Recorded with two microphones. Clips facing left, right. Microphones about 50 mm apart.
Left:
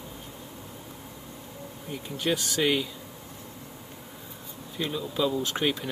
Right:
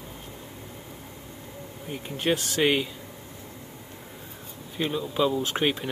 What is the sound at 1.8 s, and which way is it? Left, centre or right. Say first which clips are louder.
Speech: right 2 dB; right.